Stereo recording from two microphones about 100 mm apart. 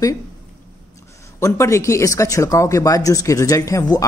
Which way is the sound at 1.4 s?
30° left (ahead or behind).